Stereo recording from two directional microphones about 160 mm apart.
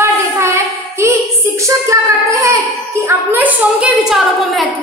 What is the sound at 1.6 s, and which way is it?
Child singing, 20° right (ahead or behind).